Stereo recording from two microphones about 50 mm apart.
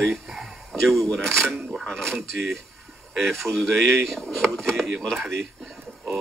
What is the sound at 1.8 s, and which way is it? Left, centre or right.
Speech, centre.